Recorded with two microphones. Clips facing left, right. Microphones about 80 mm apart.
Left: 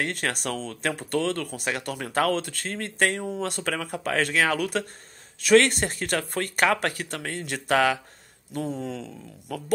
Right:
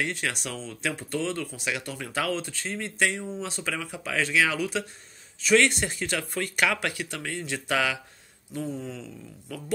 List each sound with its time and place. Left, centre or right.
0.0 s speech: left
8.8 s speech: left